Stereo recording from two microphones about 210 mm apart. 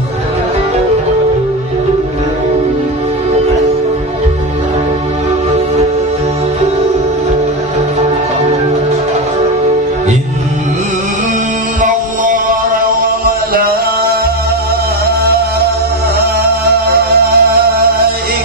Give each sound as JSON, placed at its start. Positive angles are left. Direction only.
{"t": 15.0, "sound": "music", "side_deg": -50}
{"t": 16.6, "sound": "music", "side_deg": -45}